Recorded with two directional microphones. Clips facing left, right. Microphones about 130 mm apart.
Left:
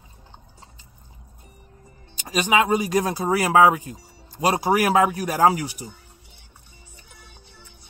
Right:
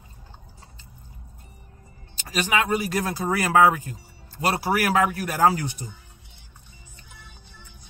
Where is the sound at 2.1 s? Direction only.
15° left (ahead or behind).